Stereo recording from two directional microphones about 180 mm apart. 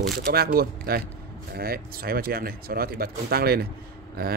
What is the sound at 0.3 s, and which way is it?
Speech, 60° right (ahead or behind).